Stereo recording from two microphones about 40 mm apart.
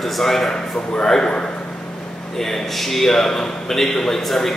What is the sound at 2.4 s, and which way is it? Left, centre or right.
Speech, centre.